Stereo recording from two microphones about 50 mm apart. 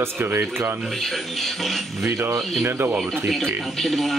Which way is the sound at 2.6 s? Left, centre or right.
Right.